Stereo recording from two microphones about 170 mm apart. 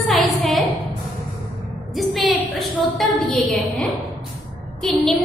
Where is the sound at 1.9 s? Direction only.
Centre (ahead or behind).